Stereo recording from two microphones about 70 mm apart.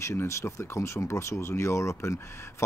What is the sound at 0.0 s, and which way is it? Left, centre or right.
Speech, left.